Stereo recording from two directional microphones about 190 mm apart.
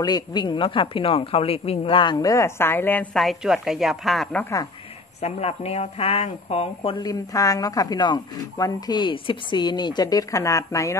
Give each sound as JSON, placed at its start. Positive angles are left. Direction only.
{"t": 0.0, "sound": "speech", "side_deg": 20}
{"t": 5.2, "sound": "speech", "side_deg": 35}